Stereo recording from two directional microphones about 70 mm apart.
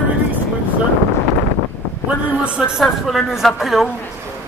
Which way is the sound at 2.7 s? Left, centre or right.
Centre.